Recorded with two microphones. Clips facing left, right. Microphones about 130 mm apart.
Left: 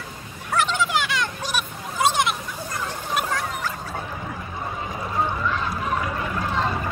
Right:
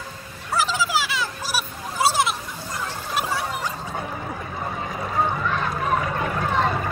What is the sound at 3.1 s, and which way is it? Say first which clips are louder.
Music: right 1 dB; 10° right (ahead or behind).